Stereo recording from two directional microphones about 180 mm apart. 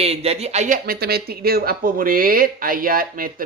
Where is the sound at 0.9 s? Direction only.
60° right (ahead or behind).